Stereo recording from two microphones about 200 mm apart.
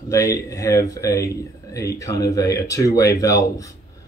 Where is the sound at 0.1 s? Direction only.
15° left (ahead or behind).